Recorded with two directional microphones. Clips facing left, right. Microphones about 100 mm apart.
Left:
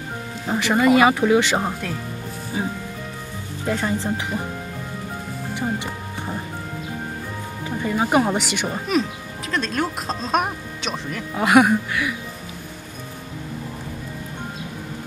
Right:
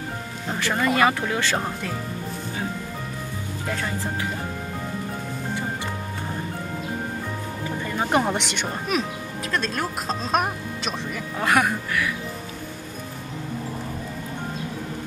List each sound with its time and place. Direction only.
0.5 s speech: 15° left (ahead or behind)
3.7 s speech: 20° left (ahead or behind)
7.8 s speech: 10° left (ahead or behind)
11.3 s speech: 10° left (ahead or behind)